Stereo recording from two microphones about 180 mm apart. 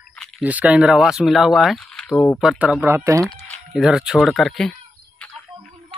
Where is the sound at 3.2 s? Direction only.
5° left (ahead or behind).